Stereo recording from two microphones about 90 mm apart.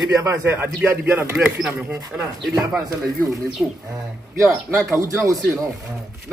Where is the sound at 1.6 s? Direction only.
10° right (ahead or behind).